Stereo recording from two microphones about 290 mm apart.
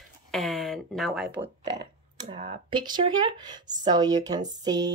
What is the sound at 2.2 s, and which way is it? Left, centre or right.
Speech, centre.